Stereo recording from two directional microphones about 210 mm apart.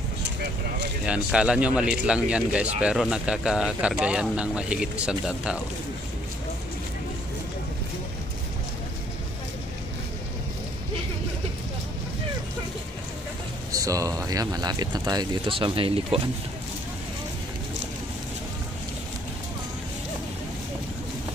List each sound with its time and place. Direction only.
0.2 s a sound: 55° right (ahead or behind)
1.0 s speech: 5° right (ahead or behind)
13.7 s speech: 15° right (ahead or behind)